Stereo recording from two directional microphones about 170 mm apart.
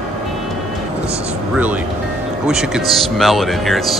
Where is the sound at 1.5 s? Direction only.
10° right (ahead or behind).